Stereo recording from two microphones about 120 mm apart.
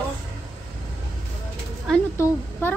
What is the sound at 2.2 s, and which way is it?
Speech, 20° left (ahead or behind).